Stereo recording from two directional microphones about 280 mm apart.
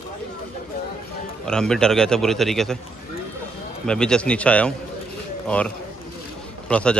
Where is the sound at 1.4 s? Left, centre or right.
Centre.